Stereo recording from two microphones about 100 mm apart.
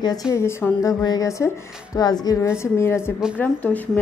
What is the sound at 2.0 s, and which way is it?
Speech, 40° left (ahead or behind).